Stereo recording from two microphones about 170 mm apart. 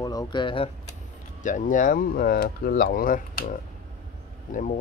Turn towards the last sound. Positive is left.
turn(degrees=50)  # may be behind; listen again after turning